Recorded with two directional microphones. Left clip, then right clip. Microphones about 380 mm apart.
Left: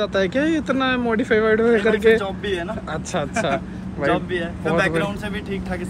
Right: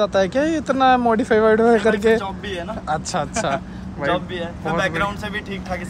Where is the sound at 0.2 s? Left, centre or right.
Right.